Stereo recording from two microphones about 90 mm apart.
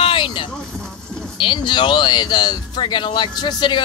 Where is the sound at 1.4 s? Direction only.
65° left (ahead or behind).